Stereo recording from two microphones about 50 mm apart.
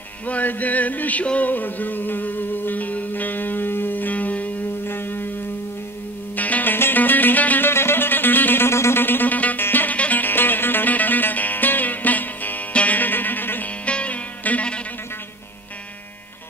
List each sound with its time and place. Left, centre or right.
0.3 s music: left
1.5 s music: left
4.8 s music: left
6.3 s music: left
7.7 s music: left
8.6 s music: left
9.0 s music: left
13.8 s music: left